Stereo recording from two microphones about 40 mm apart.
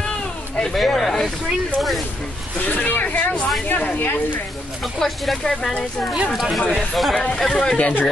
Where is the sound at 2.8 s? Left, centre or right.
Left.